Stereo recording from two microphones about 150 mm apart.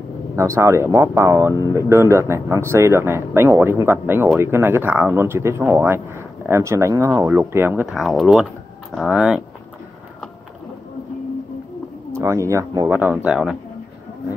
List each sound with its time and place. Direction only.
0.4 s speech: 20° right (ahead or behind)
7.9 s speech: centre (ahead or behind)
12.1 s speech: 20° right (ahead or behind)